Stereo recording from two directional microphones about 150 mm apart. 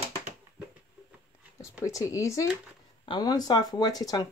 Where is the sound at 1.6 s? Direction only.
20° left (ahead or behind).